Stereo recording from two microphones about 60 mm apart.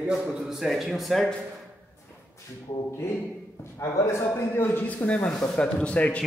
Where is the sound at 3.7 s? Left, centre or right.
Left.